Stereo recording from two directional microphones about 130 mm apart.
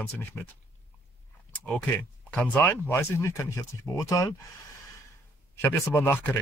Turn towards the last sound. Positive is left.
turn(degrees=15)  # may be behind; listen again after turning